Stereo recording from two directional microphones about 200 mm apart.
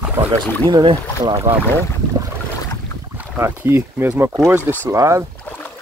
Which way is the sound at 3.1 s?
10° right (ahead or behind).